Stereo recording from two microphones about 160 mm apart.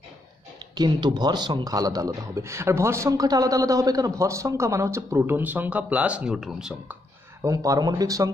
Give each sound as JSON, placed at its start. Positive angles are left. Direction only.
{"t": 0.6, "sound": "speech", "side_deg": -30}
{"t": 7.4, "sound": "speech", "side_deg": -20}